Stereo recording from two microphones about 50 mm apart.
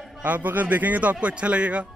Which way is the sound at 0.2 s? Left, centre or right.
Right.